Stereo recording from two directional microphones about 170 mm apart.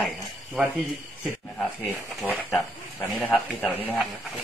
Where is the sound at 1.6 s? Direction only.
5° left (ahead or behind).